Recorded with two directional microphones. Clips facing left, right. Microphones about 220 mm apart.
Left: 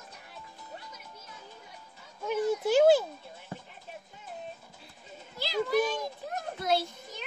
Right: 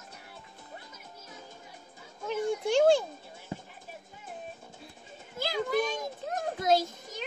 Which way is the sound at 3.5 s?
15° right (ahead or behind).